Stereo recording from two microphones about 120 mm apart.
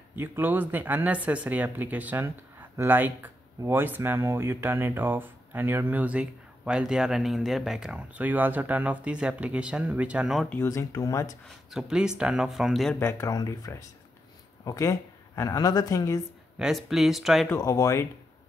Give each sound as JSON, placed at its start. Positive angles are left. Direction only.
{"t": 0.1, "sound": "speech", "side_deg": -15}
{"t": 10.5, "sound": "speech", "side_deg": 20}
{"t": 11.4, "sound": "speech", "side_deg": -5}
{"t": 13.0, "sound": "a woman's voice", "side_deg": 25}
{"t": 16.5, "sound": "speech", "side_deg": -5}
{"t": 17.6, "sound": "speech", "side_deg": 25}